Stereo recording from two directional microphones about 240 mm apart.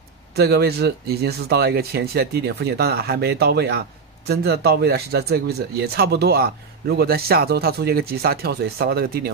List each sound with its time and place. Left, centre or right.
0.4 s a man's voice: right